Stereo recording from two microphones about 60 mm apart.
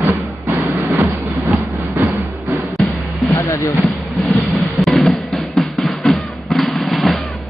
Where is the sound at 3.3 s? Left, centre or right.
Left.